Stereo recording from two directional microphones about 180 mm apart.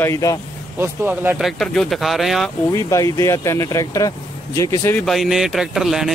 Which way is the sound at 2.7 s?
15° left (ahead or behind).